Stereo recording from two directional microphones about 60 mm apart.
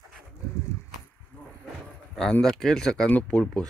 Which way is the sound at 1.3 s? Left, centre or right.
Left.